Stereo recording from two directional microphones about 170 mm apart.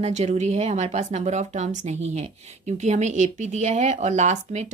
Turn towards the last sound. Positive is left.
turn(degrees=-45)  # may be behind; listen again after turning